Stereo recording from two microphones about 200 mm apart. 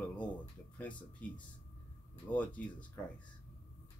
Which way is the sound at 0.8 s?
25° left (ahead or behind).